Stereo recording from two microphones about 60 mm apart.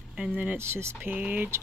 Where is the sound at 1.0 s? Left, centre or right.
Right.